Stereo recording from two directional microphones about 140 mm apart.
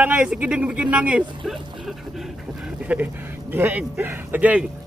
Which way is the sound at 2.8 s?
10° right (ahead or behind).